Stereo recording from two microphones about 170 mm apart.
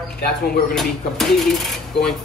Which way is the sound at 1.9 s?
Centre (ahead or behind).